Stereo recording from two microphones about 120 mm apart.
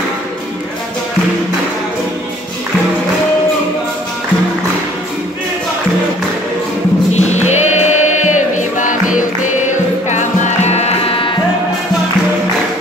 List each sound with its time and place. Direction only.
7.2 s music: 75° left (ahead or behind); by 9.5 s 90° left
10.0 s music: 80° left; by 11.3 s 50° left (ahead or behind)